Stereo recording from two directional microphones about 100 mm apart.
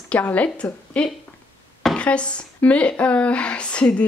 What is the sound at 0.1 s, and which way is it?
Speech, 15° left (ahead or behind).